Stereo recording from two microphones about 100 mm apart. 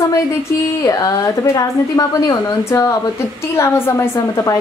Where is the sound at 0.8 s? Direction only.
35° left (ahead or behind).